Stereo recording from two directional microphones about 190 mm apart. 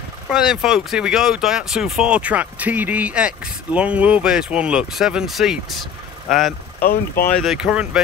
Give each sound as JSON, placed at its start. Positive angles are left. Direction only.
{"t": 0.3, "sound": "speech", "side_deg": 0}
{"t": 6.8, "sound": "speech", "side_deg": 50}
{"t": 7.3, "sound": "speech", "side_deg": 0}